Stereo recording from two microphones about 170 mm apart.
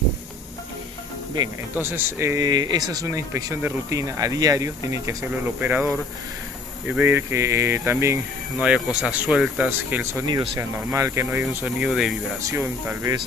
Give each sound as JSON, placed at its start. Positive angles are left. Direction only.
{"t": 1.8, "sound": "speech", "side_deg": -15}
{"t": 6.9, "sound": "speech", "side_deg": -10}
{"t": 8.5, "sound": "speech", "side_deg": -5}
{"t": 10.2, "sound": "speech", "side_deg": -25}
{"t": 10.6, "sound": "speech", "side_deg": -15}
{"t": 12.4, "sound": "speech", "side_deg": -15}